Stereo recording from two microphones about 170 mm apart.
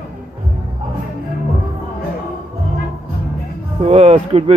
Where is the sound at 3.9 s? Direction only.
40° right (ahead or behind).